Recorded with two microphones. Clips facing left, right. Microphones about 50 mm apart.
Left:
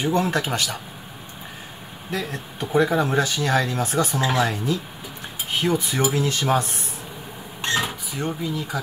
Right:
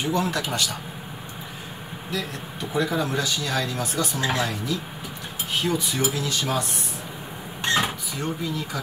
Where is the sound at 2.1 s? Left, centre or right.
Left.